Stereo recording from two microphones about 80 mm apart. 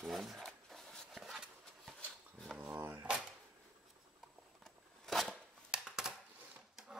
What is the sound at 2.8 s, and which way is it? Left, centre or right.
Drawer open or close, right.